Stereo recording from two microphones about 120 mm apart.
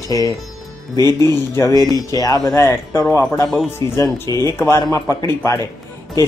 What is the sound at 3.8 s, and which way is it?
Speech, 40° right (ahead or behind).